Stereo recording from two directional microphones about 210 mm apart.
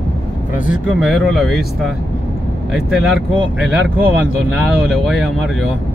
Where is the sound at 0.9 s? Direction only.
Centre (ahead or behind).